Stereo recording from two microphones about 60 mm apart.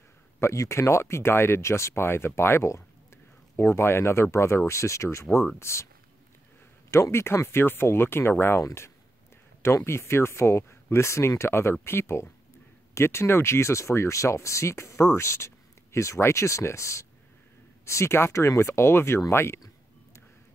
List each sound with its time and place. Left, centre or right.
0.4 s speech: left
6.9 s speech: left